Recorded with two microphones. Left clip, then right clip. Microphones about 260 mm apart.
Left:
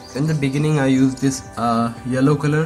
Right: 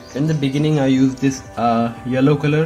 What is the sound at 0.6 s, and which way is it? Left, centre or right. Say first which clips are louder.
Speech: right 1 dB; left.